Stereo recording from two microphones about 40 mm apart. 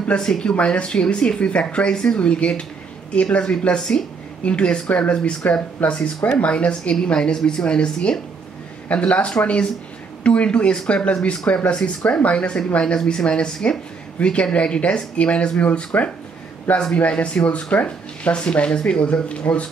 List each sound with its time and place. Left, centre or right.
0.2 s speech: left
8.8 s speech: left